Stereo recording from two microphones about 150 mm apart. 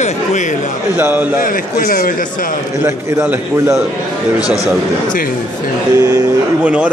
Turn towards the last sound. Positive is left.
turn(degrees=-25)  # may be behind; listen again after turning